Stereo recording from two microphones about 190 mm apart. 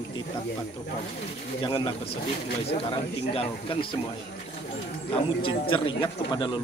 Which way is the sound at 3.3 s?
30° left (ahead or behind).